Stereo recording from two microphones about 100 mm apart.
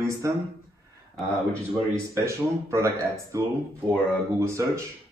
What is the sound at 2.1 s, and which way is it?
Speech, 30° right (ahead or behind).